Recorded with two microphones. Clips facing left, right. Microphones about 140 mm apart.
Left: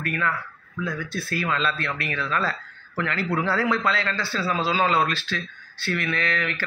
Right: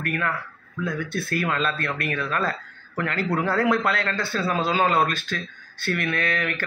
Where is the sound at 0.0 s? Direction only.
55° right (ahead or behind).